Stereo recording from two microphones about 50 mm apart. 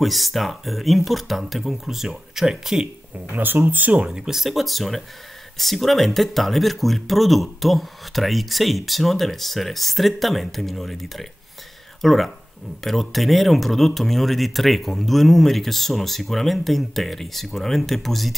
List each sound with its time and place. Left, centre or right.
0.0 s speech: centre
3.6 s speech: right
4.0 s speech: centre